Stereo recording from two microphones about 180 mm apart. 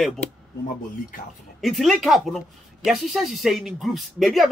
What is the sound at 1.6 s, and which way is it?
A man's voice, centre (ahead or behind).